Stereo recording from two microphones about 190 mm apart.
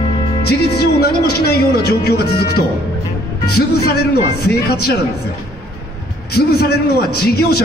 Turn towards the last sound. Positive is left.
turn(degrees=55)  # may be behind; listen again after turning